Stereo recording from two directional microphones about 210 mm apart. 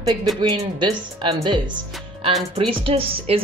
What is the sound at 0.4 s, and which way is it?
Speech, 20° right (ahead or behind).